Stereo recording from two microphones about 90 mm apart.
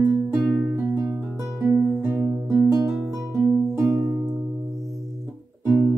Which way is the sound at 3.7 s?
30° right (ahead or behind).